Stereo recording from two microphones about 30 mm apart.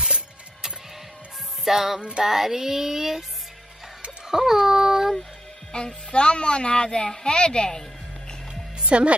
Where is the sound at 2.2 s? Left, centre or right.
Centre.